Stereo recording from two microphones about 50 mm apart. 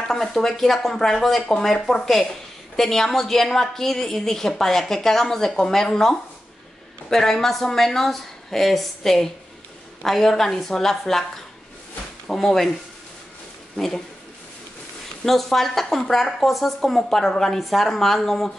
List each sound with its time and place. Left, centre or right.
0.1 s a woman's voice: centre
12.3 s a woman's voice: centre
13.7 s a woman's voice: centre
15.2 s speech: centre